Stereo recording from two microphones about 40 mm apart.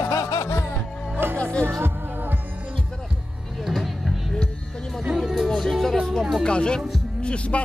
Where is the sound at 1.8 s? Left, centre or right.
Right.